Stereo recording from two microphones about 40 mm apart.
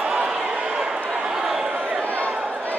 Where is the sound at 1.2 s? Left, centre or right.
Centre.